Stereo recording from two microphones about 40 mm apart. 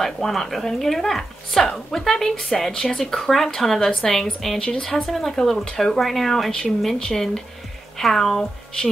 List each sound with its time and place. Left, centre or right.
0.0 s speech: centre
3.2 s speech: centre